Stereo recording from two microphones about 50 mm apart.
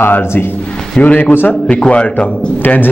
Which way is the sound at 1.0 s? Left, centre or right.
Left.